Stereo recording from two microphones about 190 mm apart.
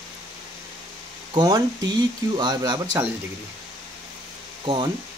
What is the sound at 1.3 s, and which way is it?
Speech, 20° right (ahead or behind).